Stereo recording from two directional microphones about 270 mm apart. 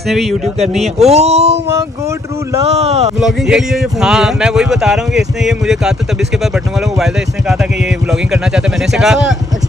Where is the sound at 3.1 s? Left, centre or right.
Centre.